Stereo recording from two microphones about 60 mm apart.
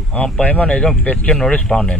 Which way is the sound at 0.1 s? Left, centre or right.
Left.